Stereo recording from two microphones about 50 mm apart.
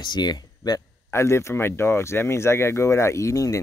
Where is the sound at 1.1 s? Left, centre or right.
Left.